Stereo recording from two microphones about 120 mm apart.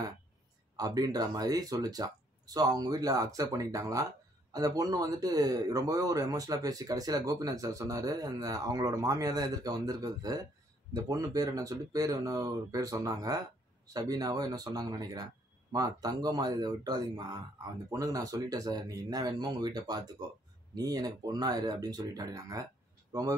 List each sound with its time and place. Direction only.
0.7 s a man's voice: 30° right (ahead or behind)